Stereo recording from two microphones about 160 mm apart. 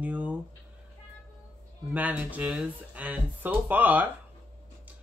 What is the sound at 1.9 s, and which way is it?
Speech, 10° right (ahead or behind).